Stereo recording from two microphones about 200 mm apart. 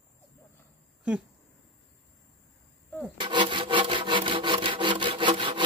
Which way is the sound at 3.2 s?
25° right (ahead or behind).